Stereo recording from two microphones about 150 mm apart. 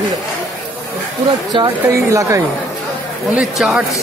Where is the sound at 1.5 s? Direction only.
20° right (ahead or behind).